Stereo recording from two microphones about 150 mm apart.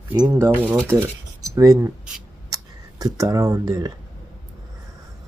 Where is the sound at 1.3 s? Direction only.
20° right (ahead or behind).